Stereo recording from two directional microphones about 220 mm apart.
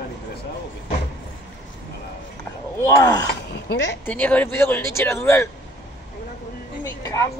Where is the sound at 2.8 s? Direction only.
15° left (ahead or behind).